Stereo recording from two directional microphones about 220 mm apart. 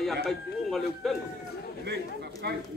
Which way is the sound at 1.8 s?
50° right (ahead or behind).